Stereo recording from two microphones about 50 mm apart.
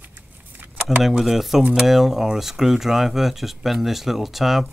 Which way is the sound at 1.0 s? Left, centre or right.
Centre.